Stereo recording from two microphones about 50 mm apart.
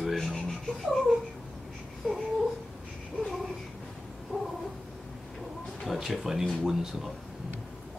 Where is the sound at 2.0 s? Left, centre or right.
Centre.